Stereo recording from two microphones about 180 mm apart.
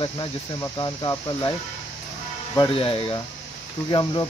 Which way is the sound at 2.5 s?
25° left (ahead or behind).